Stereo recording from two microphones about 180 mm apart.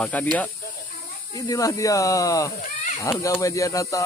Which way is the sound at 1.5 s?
20° left (ahead or behind).